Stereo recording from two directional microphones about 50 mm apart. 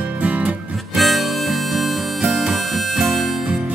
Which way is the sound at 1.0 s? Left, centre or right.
Centre.